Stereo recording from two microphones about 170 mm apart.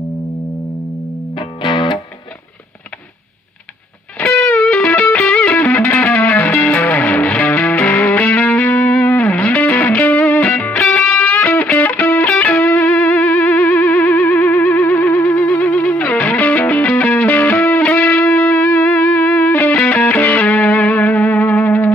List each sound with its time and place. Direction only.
1.6 s music: 30° left (ahead or behind)
4.2 s music: 10° left (ahead or behind)